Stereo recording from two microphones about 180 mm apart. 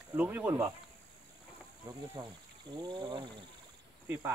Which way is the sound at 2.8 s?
25° right (ahead or behind).